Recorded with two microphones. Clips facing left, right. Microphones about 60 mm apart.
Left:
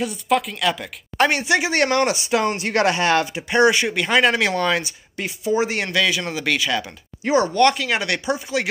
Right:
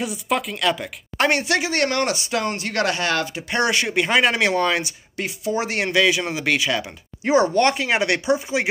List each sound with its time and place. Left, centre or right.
0.0 s speech: centre
1.5 s speech: left
3.3 s speech: centre
3.9 s speech: centre
5.9 s speech: centre
7.7 s speech: centre